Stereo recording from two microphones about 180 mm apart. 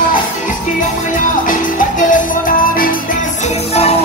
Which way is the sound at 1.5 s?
45° left (ahead or behind).